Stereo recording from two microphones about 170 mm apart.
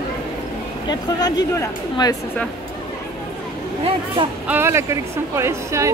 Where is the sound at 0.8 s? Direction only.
25° left (ahead or behind).